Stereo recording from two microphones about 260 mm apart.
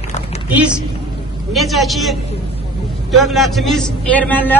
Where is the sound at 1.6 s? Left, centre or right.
Centre.